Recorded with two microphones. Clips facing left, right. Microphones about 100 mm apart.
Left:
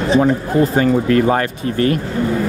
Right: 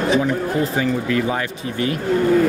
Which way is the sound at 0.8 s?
50° left (ahead or behind).